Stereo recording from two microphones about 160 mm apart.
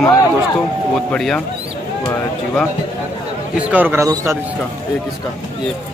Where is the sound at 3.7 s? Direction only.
10° right (ahead or behind).